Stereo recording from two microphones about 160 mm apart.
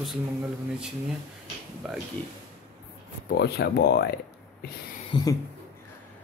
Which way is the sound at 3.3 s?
90° left.